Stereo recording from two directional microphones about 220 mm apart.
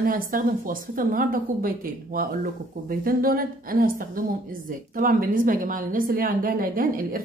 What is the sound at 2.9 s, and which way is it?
A woman's voice, 40° right (ahead or behind).